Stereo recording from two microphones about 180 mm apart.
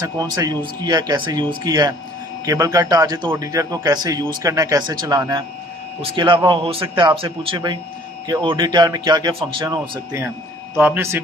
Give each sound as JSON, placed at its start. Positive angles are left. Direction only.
{"t": 0.0, "sound": "a man's voice", "side_deg": -20}
{"t": 10.8, "sound": "a man's voice", "side_deg": -15}